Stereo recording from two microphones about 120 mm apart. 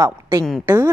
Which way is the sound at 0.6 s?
20° right (ahead or behind).